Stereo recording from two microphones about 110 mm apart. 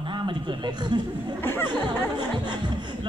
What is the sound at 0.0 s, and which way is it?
A man's voice, 45° right (ahead or behind).